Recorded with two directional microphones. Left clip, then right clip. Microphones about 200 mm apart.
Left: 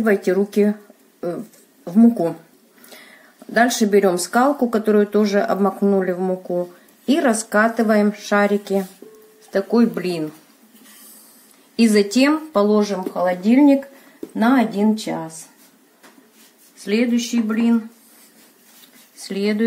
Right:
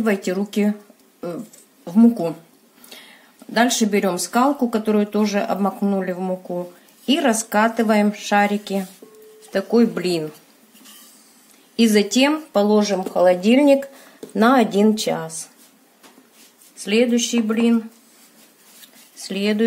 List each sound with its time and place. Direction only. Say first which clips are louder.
0.0 s speech: left 4 dB; centre (ahead or behind)
1.9 s speech: left 1 dB; 5° right (ahead or behind)
3.5 s speech: left 3 dB; 5° right (ahead or behind)
11.7 s speech: left 1 dB; 10° right (ahead or behind); by 15.3 s 35° right (ahead or behind)
16.7 s speech: right 2 dB; 20° right (ahead or behind)
19.1 s speech: even; 15° right (ahead or behind)